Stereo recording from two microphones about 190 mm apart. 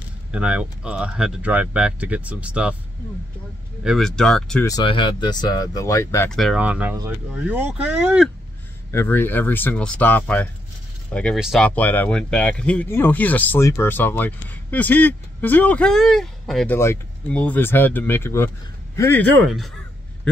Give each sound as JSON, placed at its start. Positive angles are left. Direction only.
{"t": 0.3, "sound": "speech", "side_deg": -5}
{"t": 3.8, "sound": "speech", "side_deg": 0}
{"t": 4.6, "sound": "speech", "side_deg": 25}
{"t": 6.3, "sound": "speech", "side_deg": 0}
{"t": 8.9, "sound": "speech", "side_deg": 10}
{"t": 16.7, "sound": "speech", "side_deg": 10}